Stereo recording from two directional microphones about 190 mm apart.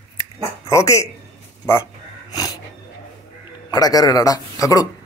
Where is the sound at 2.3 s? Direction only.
20° left (ahead or behind).